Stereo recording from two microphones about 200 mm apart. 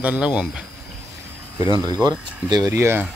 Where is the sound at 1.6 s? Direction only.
20° right (ahead or behind).